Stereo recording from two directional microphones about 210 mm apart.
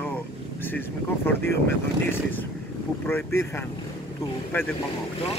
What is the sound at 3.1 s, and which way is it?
Speech, 10° left (ahead or behind).